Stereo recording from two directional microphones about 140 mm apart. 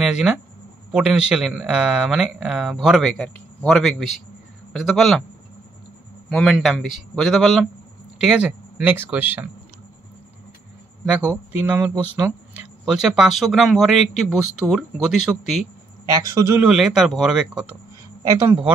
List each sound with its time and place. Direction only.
0.0 s speech: 5° right (ahead or behind)
6.2 s speech: centre (ahead or behind); by 9.5 s 15° right (ahead or behind)
11.1 s speech: 10° right (ahead or behind)
16.2 s a man's voice: 25° right (ahead or behind)
16.6 s speech: 5° right (ahead or behind)
18.2 s a man's voice: 20° right (ahead or behind)